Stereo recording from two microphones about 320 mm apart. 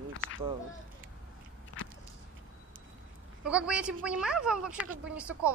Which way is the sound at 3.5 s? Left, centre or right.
Centre.